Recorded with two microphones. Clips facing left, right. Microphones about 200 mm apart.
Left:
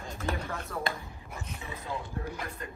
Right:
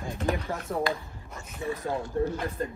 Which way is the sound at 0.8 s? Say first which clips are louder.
Right 6 dB; 25° left (ahead or behind).